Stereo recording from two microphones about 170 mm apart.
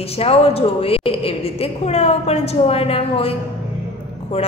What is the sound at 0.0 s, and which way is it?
A woman's voice, 35° left (ahead or behind).